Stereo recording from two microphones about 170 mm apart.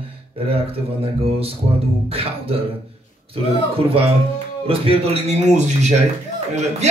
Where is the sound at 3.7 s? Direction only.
35° right (ahead or behind).